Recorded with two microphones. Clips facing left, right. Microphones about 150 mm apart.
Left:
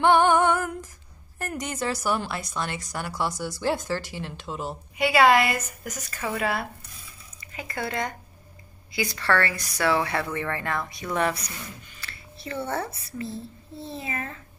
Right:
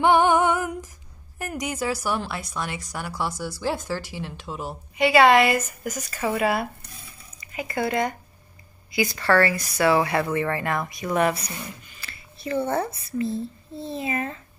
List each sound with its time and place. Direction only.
0.0 s music: 15° right (ahead or behind)
1.4 s speech: 10° right (ahead or behind)
4.9 s speech: 5° left (ahead or behind); by 11.3 s 10° right (ahead or behind)
11.3 s a child's voice: 30° right (ahead or behind)
12.0 s a child's voice: 15° right (ahead or behind)